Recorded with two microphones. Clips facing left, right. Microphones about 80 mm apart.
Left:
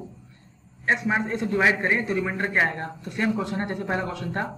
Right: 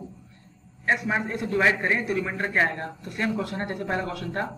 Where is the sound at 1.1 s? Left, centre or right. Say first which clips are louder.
Left 2 dB; centre.